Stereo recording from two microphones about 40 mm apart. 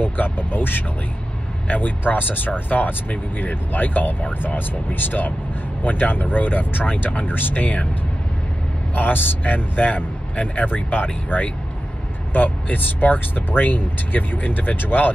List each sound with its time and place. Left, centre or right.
0.0 s speech: left
1.7 s speech: left
8.9 s speech: left